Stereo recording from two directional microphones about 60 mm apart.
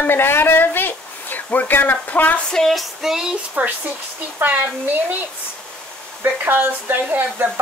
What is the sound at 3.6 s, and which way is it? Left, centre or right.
Speech, right.